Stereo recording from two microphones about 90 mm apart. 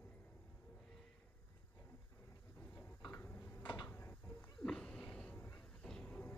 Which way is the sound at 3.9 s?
25° left (ahead or behind).